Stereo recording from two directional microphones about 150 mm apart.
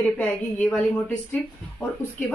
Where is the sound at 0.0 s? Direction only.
10° left (ahead or behind).